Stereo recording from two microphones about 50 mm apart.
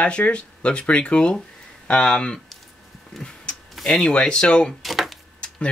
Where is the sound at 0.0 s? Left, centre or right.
Left.